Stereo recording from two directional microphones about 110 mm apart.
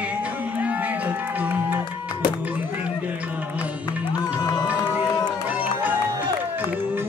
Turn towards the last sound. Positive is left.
turn(degrees=-15)  # may be behind; listen again after turning